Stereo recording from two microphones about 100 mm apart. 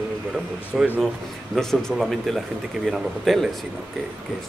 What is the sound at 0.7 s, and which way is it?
Speech, 5° right (ahead or behind).